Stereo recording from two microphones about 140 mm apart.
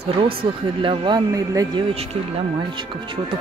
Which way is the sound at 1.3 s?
25° right (ahead or behind).